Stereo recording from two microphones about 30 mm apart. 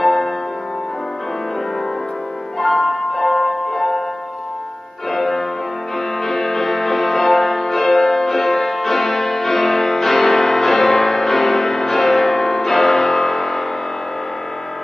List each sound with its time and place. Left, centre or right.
0.0 s music: centre
2.9 s music: centre
5.1 s music: centre